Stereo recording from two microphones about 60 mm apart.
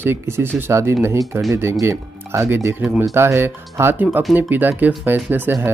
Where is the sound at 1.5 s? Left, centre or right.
Right.